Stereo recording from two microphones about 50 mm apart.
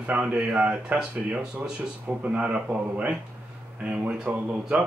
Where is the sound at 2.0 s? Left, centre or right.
Right.